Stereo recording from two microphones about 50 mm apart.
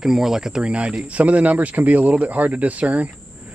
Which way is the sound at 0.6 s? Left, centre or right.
Right.